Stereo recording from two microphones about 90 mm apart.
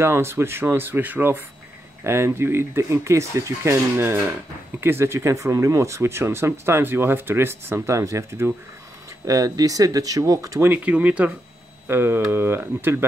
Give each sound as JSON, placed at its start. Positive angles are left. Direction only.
{"t": 0.0, "sound": "speech", "side_deg": -30}
{"t": 10.6, "sound": "speech", "side_deg": -15}
{"t": 11.9, "sound": "speech", "side_deg": -25}